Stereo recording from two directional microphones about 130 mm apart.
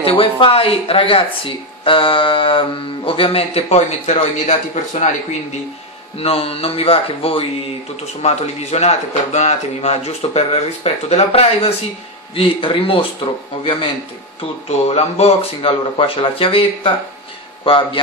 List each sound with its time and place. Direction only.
0.0 s speech: 45° left (ahead or behind)
6.1 s speech: 50° left (ahead or behind)
14.4 s speech: 55° left (ahead or behind)